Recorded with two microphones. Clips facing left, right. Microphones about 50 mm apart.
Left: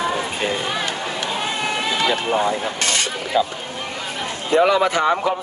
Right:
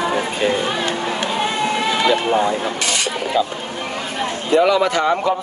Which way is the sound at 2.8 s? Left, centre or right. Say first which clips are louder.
Even; left.